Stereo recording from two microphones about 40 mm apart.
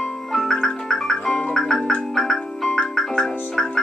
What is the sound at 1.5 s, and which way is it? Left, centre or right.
Marimba, centre.